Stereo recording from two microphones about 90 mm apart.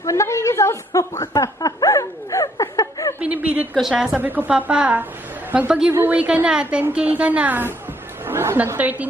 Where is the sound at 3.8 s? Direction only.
10° right (ahead or behind).